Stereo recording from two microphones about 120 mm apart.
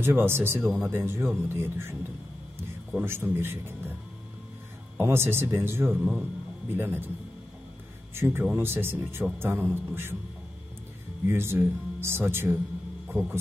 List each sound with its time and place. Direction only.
0.0 s a man's voice: 20° right (ahead or behind)
3.0 s a man's voice: 20° right (ahead or behind)
4.9 s a man's voice: 20° right (ahead or behind)
8.1 s a man's voice: 20° right (ahead or behind)
11.2 s a man's voice: 20° right (ahead or behind)